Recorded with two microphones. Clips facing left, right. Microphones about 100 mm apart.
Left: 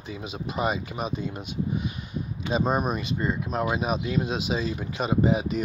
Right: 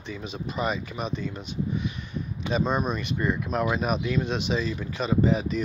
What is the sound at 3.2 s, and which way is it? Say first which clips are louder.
Speech: right 2 dB; 25° left (ahead or behind).